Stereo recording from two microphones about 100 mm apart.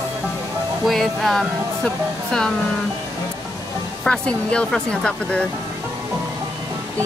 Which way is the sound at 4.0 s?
10° left (ahead or behind).